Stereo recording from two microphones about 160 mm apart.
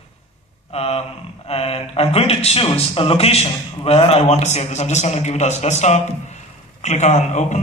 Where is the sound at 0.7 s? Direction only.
40° left (ahead or behind).